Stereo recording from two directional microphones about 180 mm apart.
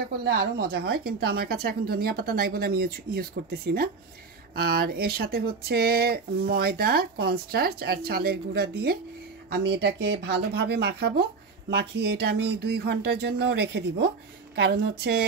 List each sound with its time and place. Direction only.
0.3 s speech: 65° right (ahead or behind)